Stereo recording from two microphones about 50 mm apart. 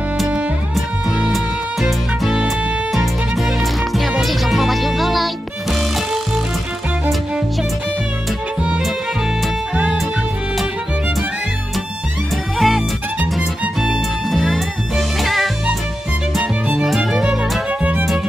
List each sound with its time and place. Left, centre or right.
1.3 s music: centre
12.5 s music: centre
16.8 s music: centre
17.6 s music: right